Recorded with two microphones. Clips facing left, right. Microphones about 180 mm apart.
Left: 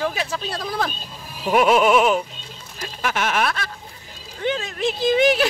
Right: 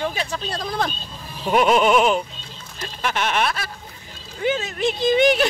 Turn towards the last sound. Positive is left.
turn(degrees=0)  # may be behind; listen again after turning